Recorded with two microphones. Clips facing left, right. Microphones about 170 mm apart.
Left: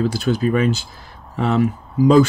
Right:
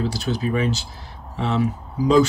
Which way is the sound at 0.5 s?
50° left (ahead or behind).